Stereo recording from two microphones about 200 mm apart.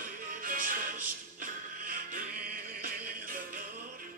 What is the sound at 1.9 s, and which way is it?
Music, 45° right (ahead or behind).